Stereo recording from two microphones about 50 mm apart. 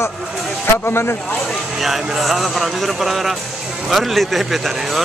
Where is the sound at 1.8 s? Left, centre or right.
Centre.